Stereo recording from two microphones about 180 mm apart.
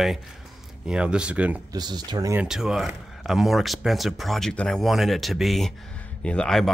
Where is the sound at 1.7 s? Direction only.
25° right (ahead or behind).